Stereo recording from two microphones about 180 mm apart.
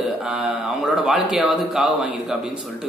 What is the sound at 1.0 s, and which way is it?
Speech, 5° right (ahead or behind).